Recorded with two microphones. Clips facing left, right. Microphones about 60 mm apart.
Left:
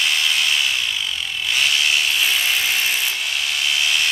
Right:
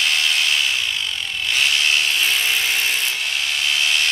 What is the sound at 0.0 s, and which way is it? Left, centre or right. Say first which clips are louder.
Ratchet: even; centre.